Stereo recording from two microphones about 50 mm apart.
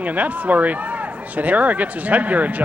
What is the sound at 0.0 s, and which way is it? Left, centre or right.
Speech, right.